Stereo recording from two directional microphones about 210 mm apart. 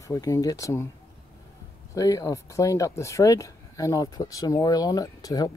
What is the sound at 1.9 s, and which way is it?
Speech, 15° left (ahead or behind).